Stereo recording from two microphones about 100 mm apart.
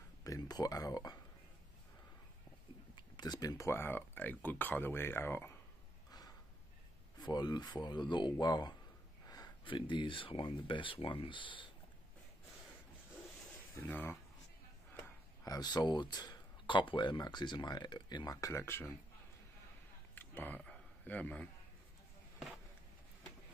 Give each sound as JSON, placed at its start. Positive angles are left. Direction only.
{"t": 0.2, "sound": "speech", "side_deg": 40}
{"t": 3.0, "sound": "speech", "side_deg": 45}
{"t": 7.2, "sound": "speech", "side_deg": 45}
{"t": 9.7, "sound": "speech", "side_deg": 55}
{"t": 13.7, "sound": "speech", "side_deg": 20}
{"t": 15.4, "sound": "speech", "side_deg": 40}
{"t": 20.2, "sound": "a sound", "side_deg": 20}